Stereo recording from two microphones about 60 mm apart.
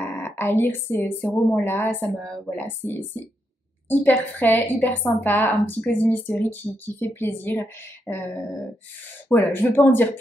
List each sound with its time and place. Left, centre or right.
0.0 s a woman's voice: left
2.1 s a woman's voice: centre
2.5 s a woman's voice: left
8.1 s a sound: left
9.3 s a woman's voice: left